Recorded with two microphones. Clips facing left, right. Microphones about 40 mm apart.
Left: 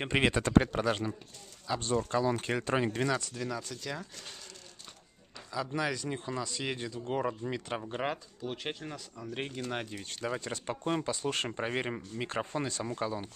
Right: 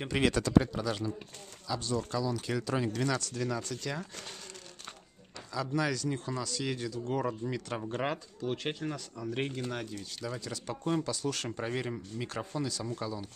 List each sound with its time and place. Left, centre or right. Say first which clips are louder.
0.0 s speech: left 1 dB; left
0.5 s speech: left 1 dB; left
3.3 s speech: right 3 dB; centre
5.8 s speech: right 3 dB; left
8.0 s speech: right 1 dB; centre
8.9 s speech: right 3 dB; centre
9.3 s speech: right 3 dB; centre
9.7 s speech: left 1 dB; left